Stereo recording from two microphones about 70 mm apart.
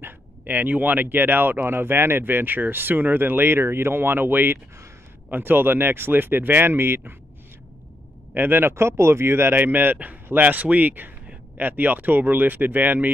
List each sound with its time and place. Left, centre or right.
0.0 s speech: right
8.4 s speech: right